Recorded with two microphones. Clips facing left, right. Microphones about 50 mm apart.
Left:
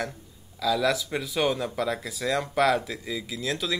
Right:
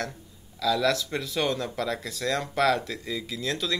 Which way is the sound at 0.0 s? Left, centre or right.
Centre.